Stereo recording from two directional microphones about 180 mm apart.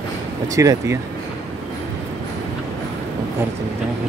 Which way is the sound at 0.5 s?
15° right (ahead or behind).